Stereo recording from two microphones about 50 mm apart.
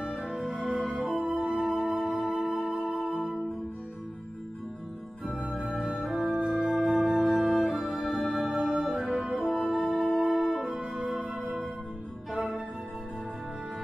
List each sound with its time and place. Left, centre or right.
0.0 s music: centre
5.5 s organ: centre
6.0 s music: centre